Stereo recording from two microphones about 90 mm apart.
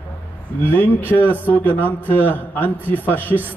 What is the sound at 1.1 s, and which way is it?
A man's voice, 20° left (ahead or behind).